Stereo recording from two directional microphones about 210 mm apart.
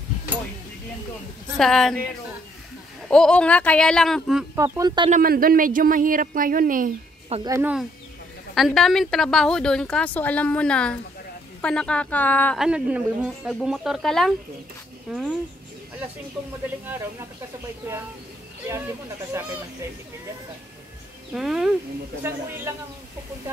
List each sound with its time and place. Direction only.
1.6 s a woman's voice: centre (ahead or behind)
3.1 s a woman's voice: 5° left (ahead or behind)
4.6 s speech: 15° right (ahead or behind)
5.1 s speech: 45° right (ahead or behind)
7.4 s speech: 15° right (ahead or behind)
8.5 s a woman's voice: centre (ahead or behind)
12.6 s a woman's voice: 5° right (ahead or behind)
18.7 s speech: 10° right (ahead or behind)
21.3 s a woman's voice: centre (ahead or behind)